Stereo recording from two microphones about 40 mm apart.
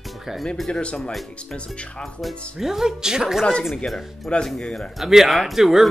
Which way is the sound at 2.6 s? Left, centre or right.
Centre.